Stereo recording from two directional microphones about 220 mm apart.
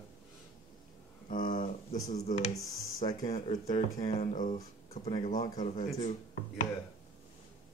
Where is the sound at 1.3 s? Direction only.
40° left (ahead or behind).